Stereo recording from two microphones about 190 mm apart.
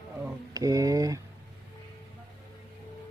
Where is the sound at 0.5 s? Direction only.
20° right (ahead or behind).